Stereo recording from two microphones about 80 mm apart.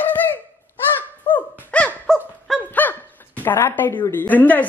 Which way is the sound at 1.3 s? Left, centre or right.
Centre.